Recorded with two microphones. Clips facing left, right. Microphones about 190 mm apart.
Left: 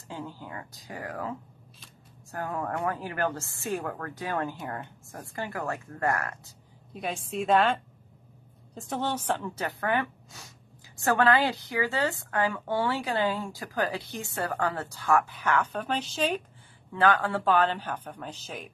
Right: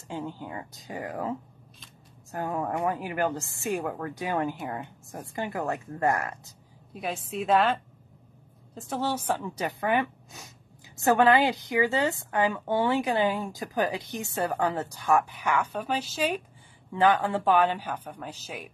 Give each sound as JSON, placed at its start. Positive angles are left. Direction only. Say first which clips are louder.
{"t": 0.1, "sound": "a woman's voice", "louder": "right 4 dB", "side_deg": -20}
{"t": 2.3, "sound": "a woman's voice", "louder": "right 2 dB", "side_deg": -20}
{"t": 6.9, "sound": "a woman's voice", "louder": "even", "side_deg": 0}